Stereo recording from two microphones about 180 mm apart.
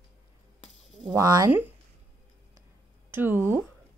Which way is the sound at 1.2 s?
20° right (ahead or behind).